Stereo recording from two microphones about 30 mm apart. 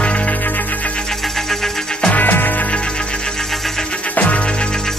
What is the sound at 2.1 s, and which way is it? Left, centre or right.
Music, left.